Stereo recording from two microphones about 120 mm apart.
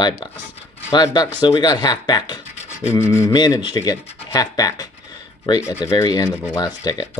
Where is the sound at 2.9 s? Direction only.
25° left (ahead or behind).